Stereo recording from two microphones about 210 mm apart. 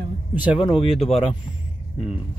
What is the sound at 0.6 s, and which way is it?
Speech, 30° left (ahead or behind).